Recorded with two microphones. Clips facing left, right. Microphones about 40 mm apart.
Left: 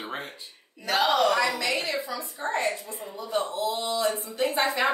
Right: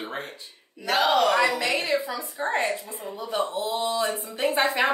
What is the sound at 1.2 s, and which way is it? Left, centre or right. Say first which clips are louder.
A woman's voice: right 2 dB; right.